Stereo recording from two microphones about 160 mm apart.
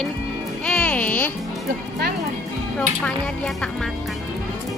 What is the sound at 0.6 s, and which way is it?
Music, 5° left (ahead or behind).